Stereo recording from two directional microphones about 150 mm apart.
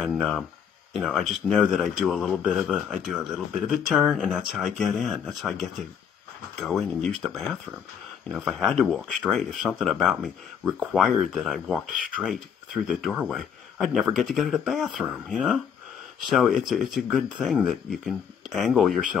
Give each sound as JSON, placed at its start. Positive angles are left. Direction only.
{"t": 0.0, "sound": "speech", "side_deg": 5}